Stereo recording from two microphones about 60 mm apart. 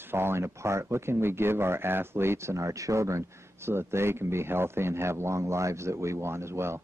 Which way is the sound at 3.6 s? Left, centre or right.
Right.